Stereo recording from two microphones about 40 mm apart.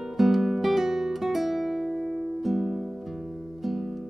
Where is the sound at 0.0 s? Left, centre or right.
Centre.